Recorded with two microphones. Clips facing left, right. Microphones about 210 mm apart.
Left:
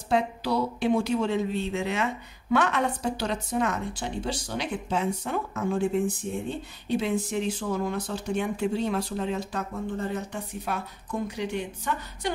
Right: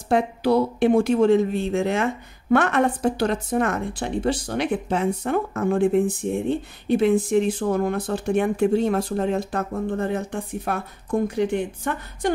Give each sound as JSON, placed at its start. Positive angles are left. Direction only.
{"t": 0.1, "sound": "speech", "side_deg": -55}
{"t": 6.9, "sound": "speech", "side_deg": -50}